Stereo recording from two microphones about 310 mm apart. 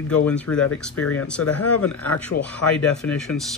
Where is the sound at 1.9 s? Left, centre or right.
Centre.